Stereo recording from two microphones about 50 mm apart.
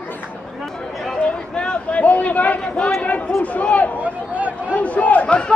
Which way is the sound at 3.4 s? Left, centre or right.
Left.